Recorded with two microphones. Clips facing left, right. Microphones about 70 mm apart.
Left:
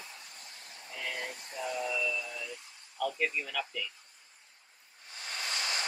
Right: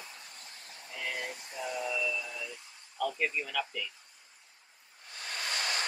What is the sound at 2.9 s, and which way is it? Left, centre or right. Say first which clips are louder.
Speech: even; centre.